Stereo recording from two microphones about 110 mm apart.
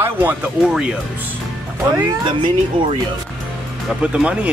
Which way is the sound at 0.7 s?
10° right (ahead or behind).